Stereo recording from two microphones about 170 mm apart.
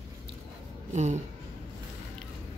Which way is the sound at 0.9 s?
45° right (ahead or behind).